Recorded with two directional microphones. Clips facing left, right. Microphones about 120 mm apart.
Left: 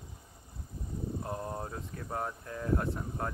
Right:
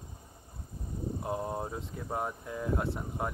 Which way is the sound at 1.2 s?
15° right (ahead or behind).